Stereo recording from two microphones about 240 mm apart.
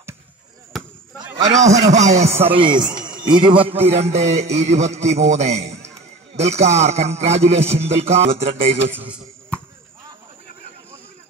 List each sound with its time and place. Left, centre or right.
0.7 s basketball bounce: centre
1.7 s a man's voice: right
8.9 s a man's voice: centre